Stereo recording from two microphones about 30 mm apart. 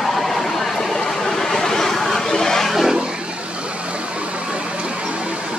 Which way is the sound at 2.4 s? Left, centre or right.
Centre.